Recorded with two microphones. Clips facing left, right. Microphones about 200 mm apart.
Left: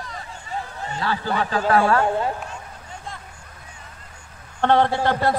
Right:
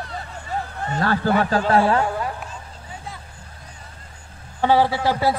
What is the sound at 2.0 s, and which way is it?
Speech, 25° left (ahead or behind).